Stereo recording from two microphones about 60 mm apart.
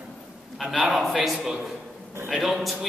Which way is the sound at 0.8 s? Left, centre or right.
Centre.